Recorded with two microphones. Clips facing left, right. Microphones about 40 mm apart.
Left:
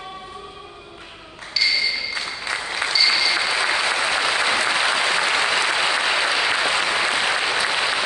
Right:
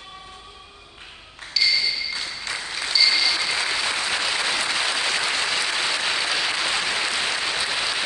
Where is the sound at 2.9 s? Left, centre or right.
Left.